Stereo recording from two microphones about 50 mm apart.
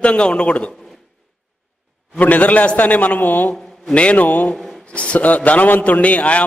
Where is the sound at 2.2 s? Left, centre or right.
Left.